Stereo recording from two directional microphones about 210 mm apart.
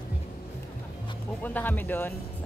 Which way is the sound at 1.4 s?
10° left (ahead or behind).